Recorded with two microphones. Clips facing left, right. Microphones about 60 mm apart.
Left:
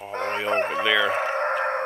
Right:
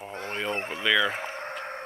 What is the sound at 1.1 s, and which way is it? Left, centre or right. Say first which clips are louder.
Chicken: left 11 dB; left.